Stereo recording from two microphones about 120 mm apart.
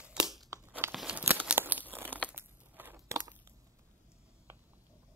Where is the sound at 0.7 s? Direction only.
20° right (ahead or behind).